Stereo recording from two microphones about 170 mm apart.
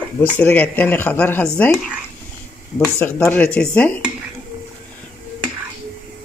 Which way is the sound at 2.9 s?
10° left (ahead or behind).